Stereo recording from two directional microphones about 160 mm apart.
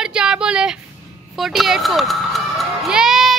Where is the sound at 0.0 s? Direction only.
5° right (ahead or behind).